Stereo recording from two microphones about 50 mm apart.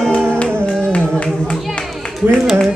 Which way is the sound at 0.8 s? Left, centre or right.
Left.